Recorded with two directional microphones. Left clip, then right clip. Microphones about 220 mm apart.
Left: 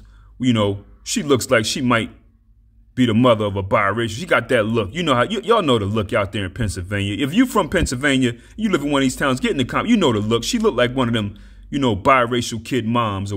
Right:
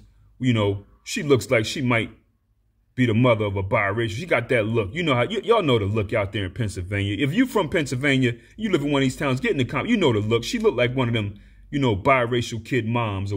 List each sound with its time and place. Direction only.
0.4 s a man's voice: 35° left (ahead or behind)